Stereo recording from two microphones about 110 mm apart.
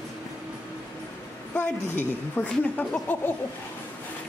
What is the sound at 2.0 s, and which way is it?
A woman's voice, 15° left (ahead or behind).